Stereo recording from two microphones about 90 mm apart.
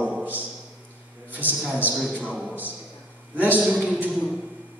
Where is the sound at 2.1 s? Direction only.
15° right (ahead or behind).